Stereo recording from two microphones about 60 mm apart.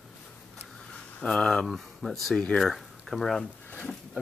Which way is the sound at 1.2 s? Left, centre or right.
Centre.